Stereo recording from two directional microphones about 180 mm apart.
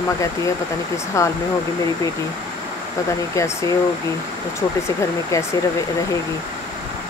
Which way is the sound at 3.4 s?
15° left (ahead or behind).